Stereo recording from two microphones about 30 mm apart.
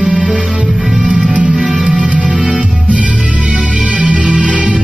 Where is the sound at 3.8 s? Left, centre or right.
Right.